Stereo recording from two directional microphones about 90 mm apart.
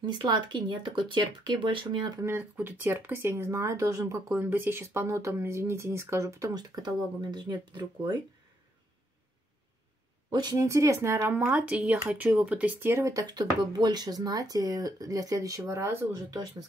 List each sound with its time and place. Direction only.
0.0 s speech: 55° right (ahead or behind)
2.2 s speech: 25° right (ahead or behind)
6.6 s speech: 50° right (ahead or behind)
10.3 s speech: 45° right (ahead or behind); by 13.0 s 25° right (ahead or behind)
13.0 s speech: 40° right (ahead or behind)